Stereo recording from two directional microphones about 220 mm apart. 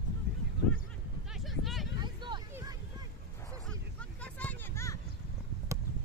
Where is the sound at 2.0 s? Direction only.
20° right (ahead or behind).